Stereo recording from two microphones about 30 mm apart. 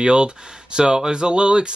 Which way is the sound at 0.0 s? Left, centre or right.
Right.